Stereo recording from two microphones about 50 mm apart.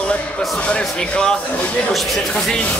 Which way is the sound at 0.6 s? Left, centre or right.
Left.